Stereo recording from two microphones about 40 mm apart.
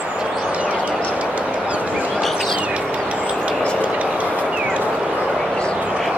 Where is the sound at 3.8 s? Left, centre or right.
Right.